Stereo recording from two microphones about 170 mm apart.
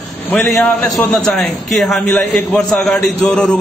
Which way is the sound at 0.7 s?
5° left (ahead or behind).